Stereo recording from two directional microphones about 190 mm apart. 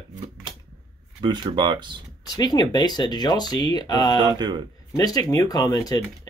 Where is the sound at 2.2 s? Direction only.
20° left (ahead or behind).